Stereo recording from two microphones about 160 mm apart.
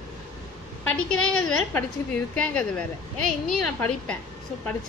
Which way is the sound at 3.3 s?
5° left (ahead or behind).